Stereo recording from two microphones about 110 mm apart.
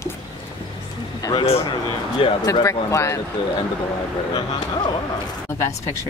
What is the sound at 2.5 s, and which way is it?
Speech, 30° left (ahead or behind).